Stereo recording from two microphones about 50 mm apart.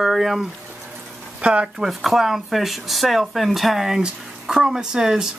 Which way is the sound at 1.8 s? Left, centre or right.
Centre.